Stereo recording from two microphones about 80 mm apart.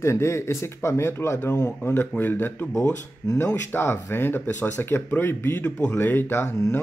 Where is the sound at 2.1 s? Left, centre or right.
Left.